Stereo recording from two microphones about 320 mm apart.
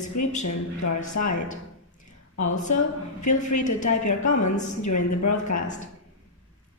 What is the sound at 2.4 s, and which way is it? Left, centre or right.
Speech, left.